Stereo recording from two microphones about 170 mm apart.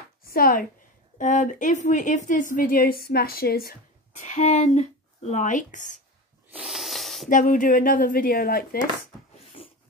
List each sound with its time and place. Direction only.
0.3 s a woman's voice: 60° left (ahead or behind)
1.1 s a woman's voice: 45° left (ahead or behind); by 3.7 s 65° left (ahead or behind)
4.2 s a woman's voice: 45° left (ahead or behind)
6.5 s a sound: 5° right (ahead or behind)
7.2 s speech: 50° left (ahead or behind)
9.4 s a sound: 35° left (ahead or behind)